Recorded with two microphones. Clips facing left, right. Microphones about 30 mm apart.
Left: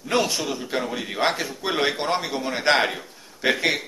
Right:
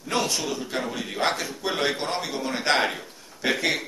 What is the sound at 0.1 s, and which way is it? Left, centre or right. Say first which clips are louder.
Speech: left 3 dB; centre.